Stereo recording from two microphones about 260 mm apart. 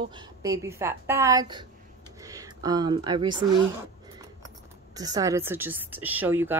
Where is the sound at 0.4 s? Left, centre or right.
Centre.